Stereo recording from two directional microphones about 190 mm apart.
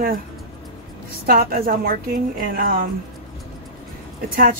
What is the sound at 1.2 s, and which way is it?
A woman's voice, 50° right (ahead or behind).